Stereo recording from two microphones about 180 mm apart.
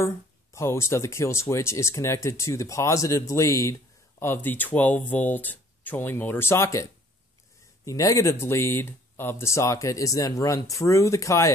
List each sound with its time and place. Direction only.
0.0 s speech: 15° left (ahead or behind)